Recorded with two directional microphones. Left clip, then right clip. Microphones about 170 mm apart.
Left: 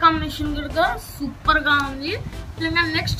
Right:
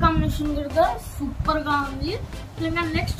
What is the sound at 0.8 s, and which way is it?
A woman's voice, 5° left (ahead or behind).